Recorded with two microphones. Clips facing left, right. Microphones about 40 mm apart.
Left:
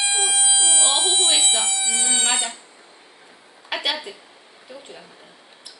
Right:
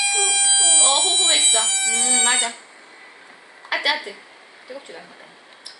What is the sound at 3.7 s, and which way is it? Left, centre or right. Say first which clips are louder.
Speech: right 4 dB; right.